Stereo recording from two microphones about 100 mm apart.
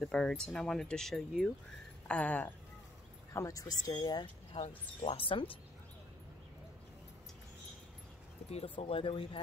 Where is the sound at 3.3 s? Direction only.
30° left (ahead or behind).